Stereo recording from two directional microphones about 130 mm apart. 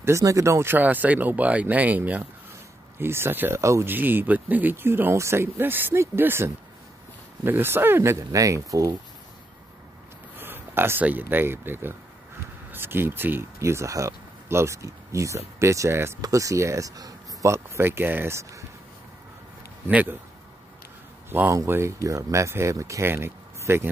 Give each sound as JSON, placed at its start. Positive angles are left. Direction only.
{"t": 0.0, "sound": "speech", "side_deg": -25}
{"t": 10.3, "sound": "speech", "side_deg": -15}
{"t": 19.9, "sound": "speech", "side_deg": -10}
{"t": 21.3, "sound": "speech", "side_deg": -20}